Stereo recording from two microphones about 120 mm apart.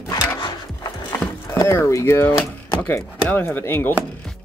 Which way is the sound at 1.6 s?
25° left (ahead or behind).